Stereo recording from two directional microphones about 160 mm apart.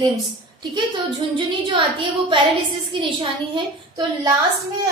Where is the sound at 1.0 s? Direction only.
30° right (ahead or behind).